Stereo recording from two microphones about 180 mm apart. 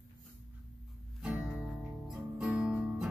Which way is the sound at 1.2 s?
5° right (ahead or behind).